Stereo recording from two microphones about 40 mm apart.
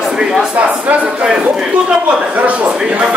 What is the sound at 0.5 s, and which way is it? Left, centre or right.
Speech, right.